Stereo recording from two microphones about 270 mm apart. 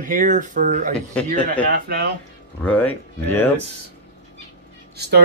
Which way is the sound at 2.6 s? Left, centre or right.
Centre.